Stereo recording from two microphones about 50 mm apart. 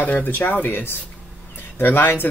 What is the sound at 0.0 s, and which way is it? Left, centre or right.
Speech, left.